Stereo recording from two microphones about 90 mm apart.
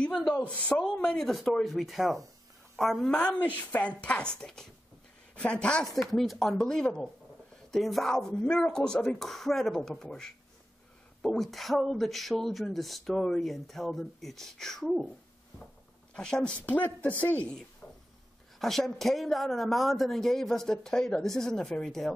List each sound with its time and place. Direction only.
0.4 s a woman's voice: 20° left (ahead or behind); by 3.2 s centre (ahead or behind)
3.5 s speech: 20° left (ahead or behind); by 15.0 s 5° left (ahead or behind)
16.2 s speech: 10° left (ahead or behind)
17.8 s a sound: 10° left (ahead or behind)
18.6 s speech: 5° left (ahead or behind)